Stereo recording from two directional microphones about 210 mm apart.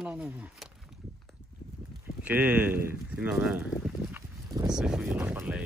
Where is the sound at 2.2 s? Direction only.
10° right (ahead or behind).